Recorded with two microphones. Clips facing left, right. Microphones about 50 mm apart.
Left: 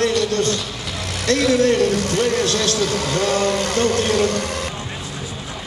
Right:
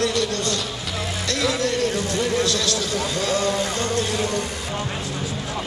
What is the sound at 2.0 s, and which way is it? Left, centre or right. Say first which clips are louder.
Vehicle: left 3 dB; left.